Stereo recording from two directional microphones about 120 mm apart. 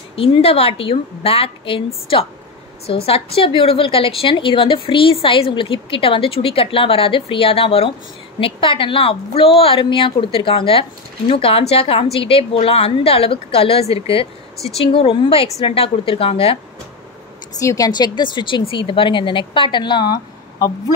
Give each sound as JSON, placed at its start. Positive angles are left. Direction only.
{"t": 0.1, "sound": "a woman's voice", "side_deg": 50}
{"t": 17.6, "sound": "speech", "side_deg": 30}